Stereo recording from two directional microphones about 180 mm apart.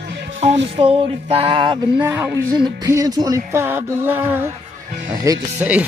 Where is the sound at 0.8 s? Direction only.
30° right (ahead or behind); by 4.2 s 10° right (ahead or behind).